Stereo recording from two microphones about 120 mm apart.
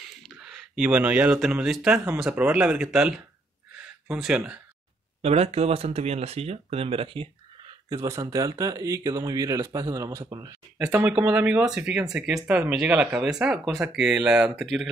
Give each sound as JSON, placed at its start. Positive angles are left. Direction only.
{"t": 0.2, "sound": "a sound", "side_deg": -5}
{"t": 1.5, "sound": "speech", "side_deg": -5}
{"t": 5.2, "sound": "speech", "side_deg": -60}
{"t": 7.9, "sound": "speech", "side_deg": -25}
{"t": 11.0, "sound": "speech", "side_deg": -10}